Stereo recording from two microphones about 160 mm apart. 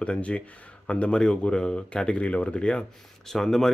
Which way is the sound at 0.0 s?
10° left (ahead or behind).